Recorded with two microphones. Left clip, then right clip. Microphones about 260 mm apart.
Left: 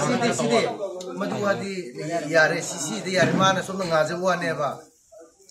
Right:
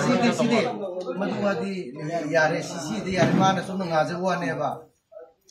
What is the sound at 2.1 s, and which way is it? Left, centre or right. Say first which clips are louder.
A man's voice: left 2 dB; centre.